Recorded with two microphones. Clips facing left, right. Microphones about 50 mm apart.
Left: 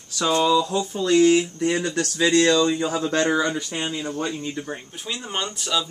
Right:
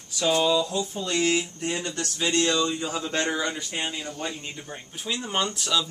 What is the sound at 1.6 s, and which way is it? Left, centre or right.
Speech, left.